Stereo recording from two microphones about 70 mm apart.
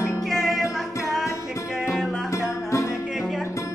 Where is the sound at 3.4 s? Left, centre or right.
Left.